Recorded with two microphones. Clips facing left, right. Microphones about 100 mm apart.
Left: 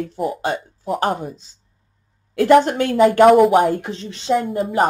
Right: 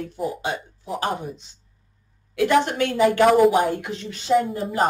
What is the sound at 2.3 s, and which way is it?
Speech, 40° left (ahead or behind).